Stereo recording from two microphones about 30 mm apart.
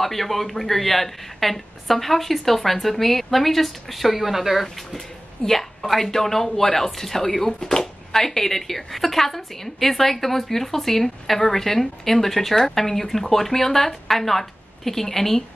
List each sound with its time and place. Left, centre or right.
0.0 s a woman's voice: centre
4.9 s a sound: centre
5.6 s speech: centre